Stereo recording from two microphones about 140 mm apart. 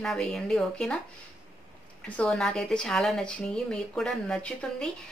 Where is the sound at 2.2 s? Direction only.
5° left (ahead or behind).